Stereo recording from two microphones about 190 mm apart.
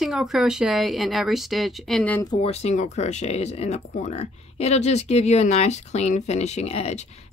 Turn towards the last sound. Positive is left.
turn(degrees=35)  # may be behind; listen again after turning